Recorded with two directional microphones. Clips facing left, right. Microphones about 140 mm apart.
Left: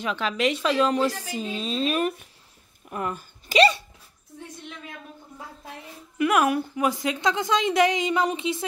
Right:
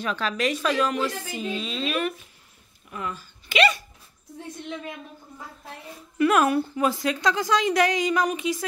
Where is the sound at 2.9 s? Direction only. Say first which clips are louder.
Left 3 dB; 50° left (ahead or behind); by 3.8 s 35° left (ahead or behind).